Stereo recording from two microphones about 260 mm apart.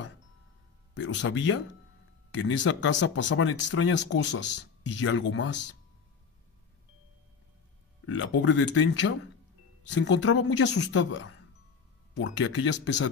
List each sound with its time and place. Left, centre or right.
0.9 s speech: left
8.1 s speech: left